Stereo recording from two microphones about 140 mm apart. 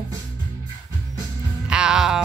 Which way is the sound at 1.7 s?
5° right (ahead or behind).